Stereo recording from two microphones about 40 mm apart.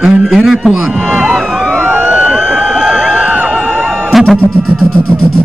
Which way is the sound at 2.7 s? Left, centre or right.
Centre.